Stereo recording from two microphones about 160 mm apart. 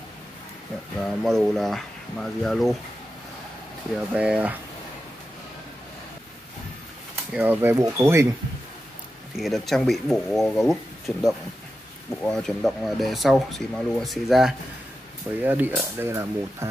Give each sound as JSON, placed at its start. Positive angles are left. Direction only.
{"t": 1.0, "sound": "speech", "side_deg": 0}
{"t": 4.1, "sound": "speech", "side_deg": -10}
{"t": 7.3, "sound": "speech", "side_deg": -15}
{"t": 9.4, "sound": "speech", "side_deg": 0}
{"t": 15.4, "sound": "speech", "side_deg": -10}